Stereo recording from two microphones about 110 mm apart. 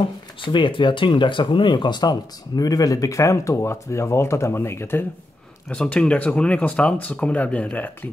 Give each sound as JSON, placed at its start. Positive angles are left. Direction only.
{"t": 0.4, "sound": "speech", "side_deg": 45}
{"t": 5.7, "sound": "speech", "side_deg": 10}